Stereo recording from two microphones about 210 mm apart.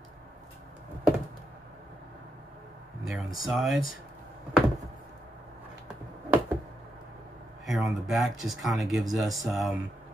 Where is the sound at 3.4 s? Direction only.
Centre (ahead or behind).